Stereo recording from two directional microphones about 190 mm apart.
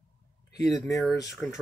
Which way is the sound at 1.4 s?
5° left (ahead or behind).